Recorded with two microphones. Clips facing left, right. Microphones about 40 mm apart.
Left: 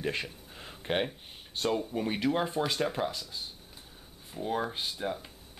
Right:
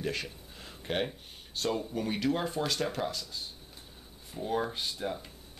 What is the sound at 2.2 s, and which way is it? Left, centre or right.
Speech, centre.